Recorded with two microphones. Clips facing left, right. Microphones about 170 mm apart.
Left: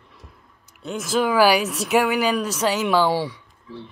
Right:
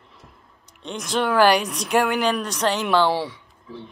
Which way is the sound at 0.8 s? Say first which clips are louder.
Left 2 dB; 5° left (ahead or behind).